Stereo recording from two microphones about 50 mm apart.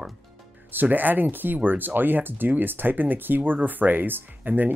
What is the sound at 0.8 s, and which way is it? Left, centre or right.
Speech, right.